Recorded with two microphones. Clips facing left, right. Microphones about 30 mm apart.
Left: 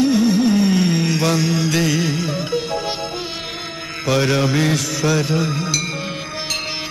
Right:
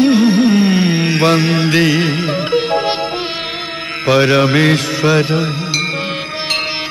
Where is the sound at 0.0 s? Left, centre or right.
Right.